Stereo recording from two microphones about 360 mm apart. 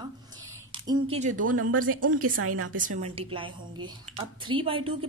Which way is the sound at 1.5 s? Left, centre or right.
Right.